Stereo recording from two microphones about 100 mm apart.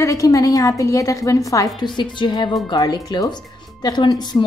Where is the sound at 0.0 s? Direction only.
35° left (ahead or behind).